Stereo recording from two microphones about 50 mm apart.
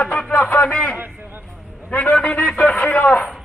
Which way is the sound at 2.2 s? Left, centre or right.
Left.